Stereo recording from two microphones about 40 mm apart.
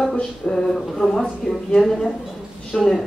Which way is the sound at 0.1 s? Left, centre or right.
Centre.